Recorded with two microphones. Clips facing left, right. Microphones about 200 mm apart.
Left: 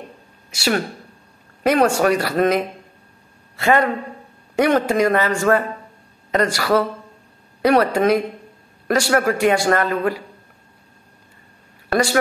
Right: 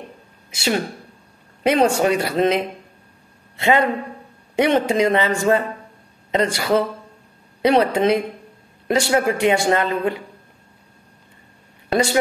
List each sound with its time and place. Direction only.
1.6 s speech: 20° right (ahead or behind)
11.9 s speech: 20° right (ahead or behind)